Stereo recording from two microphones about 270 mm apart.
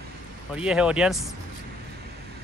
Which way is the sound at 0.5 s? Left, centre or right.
Centre.